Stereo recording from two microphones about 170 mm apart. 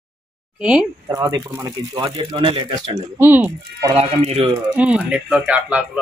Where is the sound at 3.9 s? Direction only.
40° right (ahead or behind).